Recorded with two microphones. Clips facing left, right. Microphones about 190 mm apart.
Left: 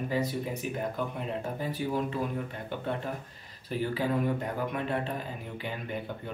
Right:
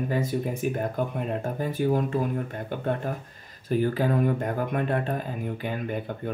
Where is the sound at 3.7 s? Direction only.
50° right (ahead or behind).